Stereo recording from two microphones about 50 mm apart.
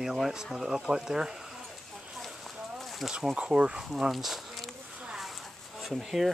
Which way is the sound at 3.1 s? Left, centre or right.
Centre.